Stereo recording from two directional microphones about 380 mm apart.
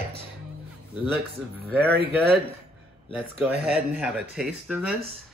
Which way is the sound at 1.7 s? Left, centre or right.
Centre.